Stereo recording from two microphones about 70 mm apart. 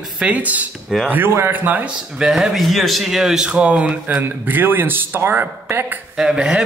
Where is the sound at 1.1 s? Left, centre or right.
Right.